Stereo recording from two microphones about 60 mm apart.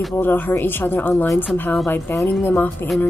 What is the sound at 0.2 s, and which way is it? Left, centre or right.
Speech, left.